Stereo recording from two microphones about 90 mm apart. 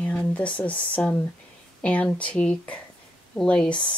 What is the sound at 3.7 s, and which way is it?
Speech, 65° left (ahead or behind).